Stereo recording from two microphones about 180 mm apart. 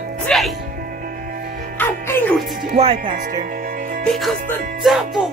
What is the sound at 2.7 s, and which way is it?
Speech, 35° right (ahead or behind).